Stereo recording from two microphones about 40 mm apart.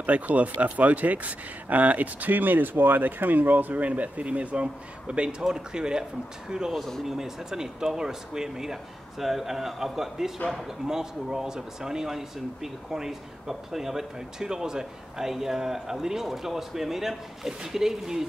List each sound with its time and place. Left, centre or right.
0.0 s speech: right
7.1 s speech: centre